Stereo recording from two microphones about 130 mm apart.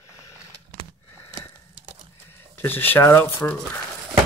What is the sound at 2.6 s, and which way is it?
Speech, 15° left (ahead or behind).